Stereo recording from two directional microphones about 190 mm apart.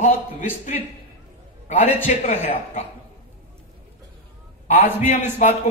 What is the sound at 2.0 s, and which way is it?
Speech, 35° left (ahead or behind).